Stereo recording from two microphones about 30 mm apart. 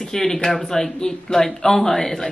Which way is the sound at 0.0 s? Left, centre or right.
Centre.